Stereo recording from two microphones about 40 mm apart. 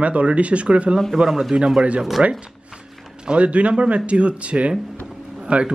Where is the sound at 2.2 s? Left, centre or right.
Right.